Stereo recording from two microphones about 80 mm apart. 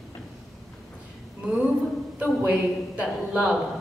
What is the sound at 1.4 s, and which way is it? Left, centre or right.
A woman's voice, centre.